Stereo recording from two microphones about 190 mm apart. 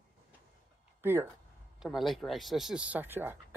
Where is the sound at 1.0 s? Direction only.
10° right (ahead or behind).